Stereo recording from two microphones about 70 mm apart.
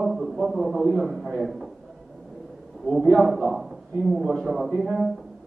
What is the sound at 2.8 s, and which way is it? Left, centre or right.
A man's voice, centre.